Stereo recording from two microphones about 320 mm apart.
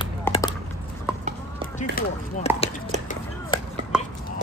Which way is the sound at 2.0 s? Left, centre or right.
Left.